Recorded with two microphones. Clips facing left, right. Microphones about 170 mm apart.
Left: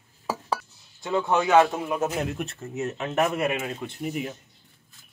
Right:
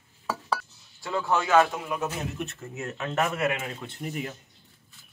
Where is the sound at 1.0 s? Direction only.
20° left (ahead or behind).